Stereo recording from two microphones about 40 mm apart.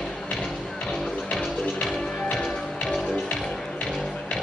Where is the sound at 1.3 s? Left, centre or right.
Centre.